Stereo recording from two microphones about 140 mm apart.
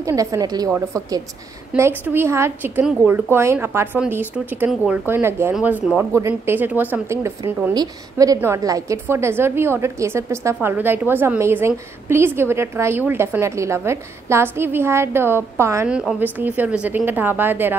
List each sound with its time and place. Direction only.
0.0 s a woman's voice: 25° right (ahead or behind); by 5.0 s 5° right (ahead or behind)
5.0 s a woman's voice: 15° right (ahead or behind)
15.9 s speech: centre (ahead or behind)
16.2 s a woman's voice: 10° right (ahead or behind)